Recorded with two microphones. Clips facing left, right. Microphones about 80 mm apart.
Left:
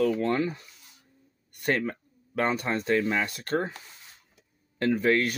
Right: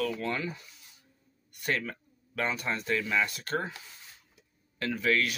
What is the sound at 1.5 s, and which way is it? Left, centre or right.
Speech, left.